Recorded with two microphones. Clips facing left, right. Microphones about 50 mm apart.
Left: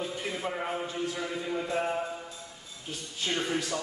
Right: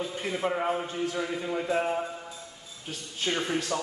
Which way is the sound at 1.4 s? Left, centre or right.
Centre.